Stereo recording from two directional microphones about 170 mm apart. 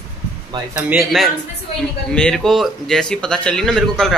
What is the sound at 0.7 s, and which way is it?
Speech, 5° right (ahead or behind).